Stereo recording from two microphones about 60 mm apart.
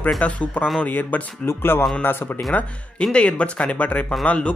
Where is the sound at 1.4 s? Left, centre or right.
Left.